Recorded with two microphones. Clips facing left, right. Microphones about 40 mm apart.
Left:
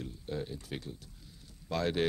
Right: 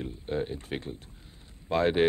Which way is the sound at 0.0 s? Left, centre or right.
Right.